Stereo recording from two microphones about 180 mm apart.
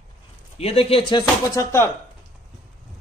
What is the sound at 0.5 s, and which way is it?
Speech, 35° left (ahead or behind).